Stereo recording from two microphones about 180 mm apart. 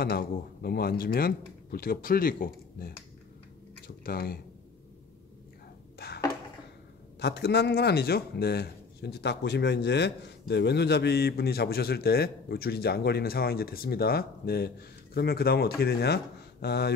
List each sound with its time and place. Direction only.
0.0 s speech: 60° left (ahead or behind)
5.9 s a sound: 60° left (ahead or behind)
7.2 s speech: 70° left (ahead or behind)